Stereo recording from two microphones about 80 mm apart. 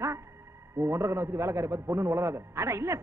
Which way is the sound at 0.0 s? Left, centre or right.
Right.